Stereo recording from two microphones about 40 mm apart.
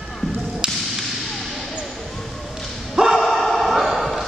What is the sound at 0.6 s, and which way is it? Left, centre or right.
Whip, right.